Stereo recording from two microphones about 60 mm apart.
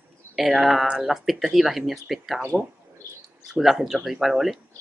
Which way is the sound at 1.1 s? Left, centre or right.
Centre.